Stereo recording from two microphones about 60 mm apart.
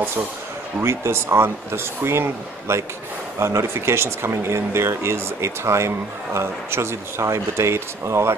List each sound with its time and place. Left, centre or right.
0.7 s speech: right